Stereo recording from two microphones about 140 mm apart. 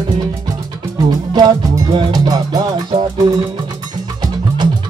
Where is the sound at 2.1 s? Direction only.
25° right (ahead or behind).